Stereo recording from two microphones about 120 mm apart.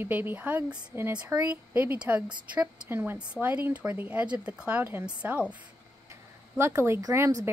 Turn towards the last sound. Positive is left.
turn(degrees=-20)  # may be behind; listen again after turning